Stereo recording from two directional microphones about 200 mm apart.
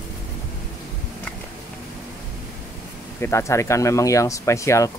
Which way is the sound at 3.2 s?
15° left (ahead or behind).